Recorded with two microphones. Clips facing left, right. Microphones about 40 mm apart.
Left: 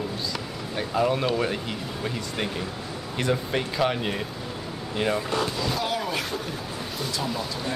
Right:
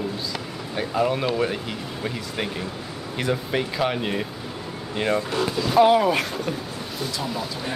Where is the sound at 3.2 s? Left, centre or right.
Centre.